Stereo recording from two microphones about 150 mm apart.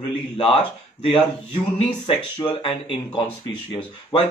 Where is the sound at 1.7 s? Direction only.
35° left (ahead or behind).